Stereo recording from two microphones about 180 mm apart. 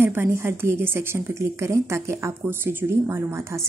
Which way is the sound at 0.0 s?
15° right (ahead or behind).